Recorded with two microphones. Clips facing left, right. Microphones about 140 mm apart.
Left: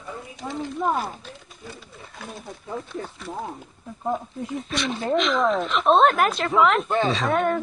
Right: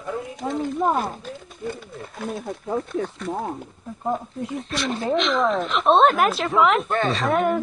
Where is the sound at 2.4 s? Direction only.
55° right (ahead or behind).